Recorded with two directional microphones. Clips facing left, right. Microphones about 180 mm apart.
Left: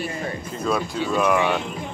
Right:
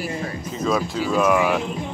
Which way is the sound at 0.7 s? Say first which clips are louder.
Right 2 dB; centre (ahead or behind).